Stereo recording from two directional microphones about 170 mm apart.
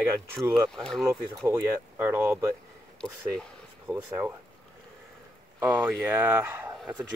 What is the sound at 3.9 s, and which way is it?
Speech, 10° right (ahead or behind).